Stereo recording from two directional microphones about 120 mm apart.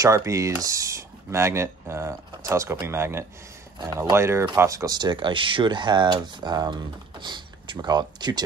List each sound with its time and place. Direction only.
0.0 s speech: 25° right (ahead or behind)